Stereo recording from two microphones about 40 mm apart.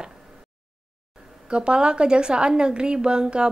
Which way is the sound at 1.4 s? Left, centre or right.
Right.